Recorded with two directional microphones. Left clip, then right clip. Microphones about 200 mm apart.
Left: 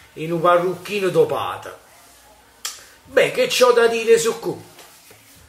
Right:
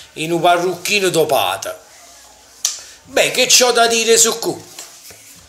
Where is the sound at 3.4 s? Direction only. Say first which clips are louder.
Right 3 dB; centre (ahead or behind).